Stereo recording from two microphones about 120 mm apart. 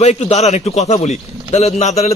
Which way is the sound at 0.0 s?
70° left (ahead or behind).